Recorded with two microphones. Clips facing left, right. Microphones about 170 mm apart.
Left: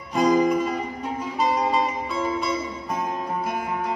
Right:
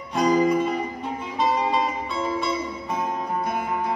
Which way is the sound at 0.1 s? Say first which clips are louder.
Left 1 dB; centre (ahead or behind).